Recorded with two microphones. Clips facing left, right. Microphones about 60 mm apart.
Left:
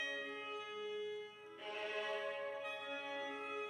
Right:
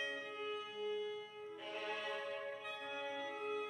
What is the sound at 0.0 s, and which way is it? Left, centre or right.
Music, left.